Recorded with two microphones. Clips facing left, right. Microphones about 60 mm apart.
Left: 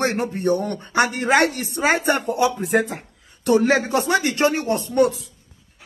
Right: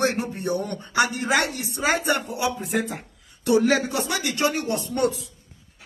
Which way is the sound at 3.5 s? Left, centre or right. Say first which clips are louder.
Left 3 dB; left.